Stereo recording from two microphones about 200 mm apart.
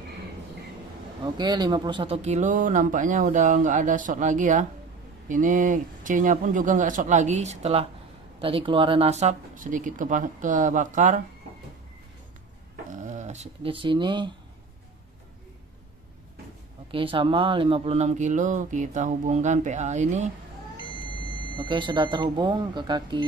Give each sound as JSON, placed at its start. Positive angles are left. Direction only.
{"t": 1.2, "sound": "speech", "side_deg": -20}
{"t": 12.9, "sound": "speech", "side_deg": -35}
{"t": 16.9, "sound": "speech", "side_deg": -25}
{"t": 21.5, "sound": "speech", "side_deg": -25}